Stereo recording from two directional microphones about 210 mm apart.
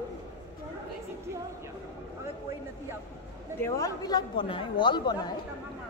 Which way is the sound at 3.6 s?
15° left (ahead or behind).